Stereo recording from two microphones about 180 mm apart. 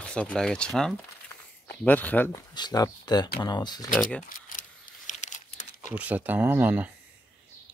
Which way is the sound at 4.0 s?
5° left (ahead or behind).